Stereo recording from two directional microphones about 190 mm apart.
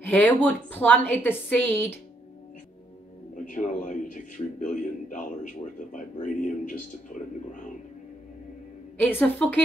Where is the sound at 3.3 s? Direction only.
40° left (ahead or behind).